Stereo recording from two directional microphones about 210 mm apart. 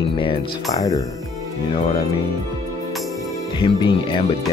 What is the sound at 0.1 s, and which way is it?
Speech, 25° left (ahead or behind).